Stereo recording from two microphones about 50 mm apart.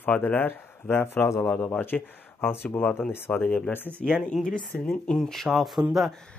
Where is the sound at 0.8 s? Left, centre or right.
Left.